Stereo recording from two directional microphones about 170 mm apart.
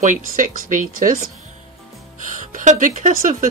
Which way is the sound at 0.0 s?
50° right (ahead or behind).